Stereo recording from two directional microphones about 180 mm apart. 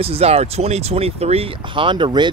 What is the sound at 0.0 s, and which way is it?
Speech, 35° right (ahead or behind).